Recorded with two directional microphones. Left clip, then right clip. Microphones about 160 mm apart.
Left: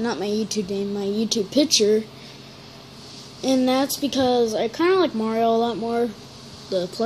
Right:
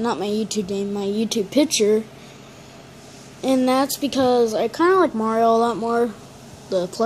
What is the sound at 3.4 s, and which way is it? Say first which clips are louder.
A woman's voice: right 2 dB; 5° right (ahead or behind).